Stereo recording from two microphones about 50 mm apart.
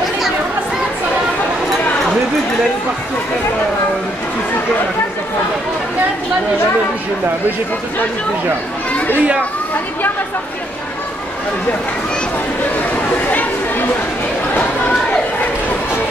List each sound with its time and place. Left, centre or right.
8.9 s children playing: left
13.3 s speech: left
14.6 s chatter: left